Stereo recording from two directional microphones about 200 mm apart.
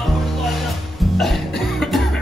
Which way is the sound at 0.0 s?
Centre (ahead or behind).